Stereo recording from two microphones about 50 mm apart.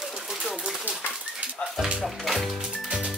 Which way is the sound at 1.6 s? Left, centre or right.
Centre.